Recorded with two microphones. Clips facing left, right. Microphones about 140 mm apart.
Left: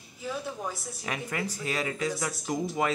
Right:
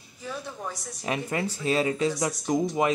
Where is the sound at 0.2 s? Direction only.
5° left (ahead or behind).